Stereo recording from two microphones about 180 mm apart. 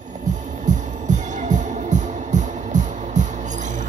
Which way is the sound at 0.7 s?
40° right (ahead or behind).